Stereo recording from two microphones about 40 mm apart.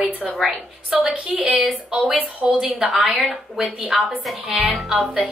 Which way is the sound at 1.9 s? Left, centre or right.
Right.